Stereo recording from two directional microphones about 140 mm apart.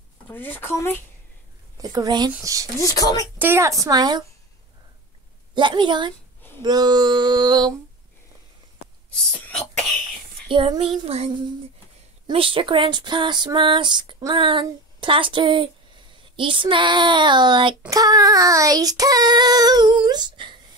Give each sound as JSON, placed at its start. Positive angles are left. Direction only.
{"t": 0.3, "sound": "speech", "side_deg": 15}
{"t": 1.8, "sound": "child singing", "side_deg": -25}
{"t": 2.8, "sound": "speech", "side_deg": 25}
{"t": 3.3, "sound": "child singing", "side_deg": -15}
{"t": 5.5, "sound": "speech", "side_deg": -35}
{"t": 9.3, "sound": "cough", "side_deg": 5}
{"t": 10.5, "sound": "speech", "side_deg": -35}
{"t": 12.3, "sound": "speech", "side_deg": -40}
{"t": 17.8, "sound": "child singing", "side_deg": -25}
{"t": 20.1, "sound": "speech", "side_deg": -30}